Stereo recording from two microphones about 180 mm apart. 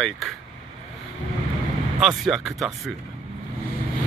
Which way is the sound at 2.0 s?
Centre (ahead or behind).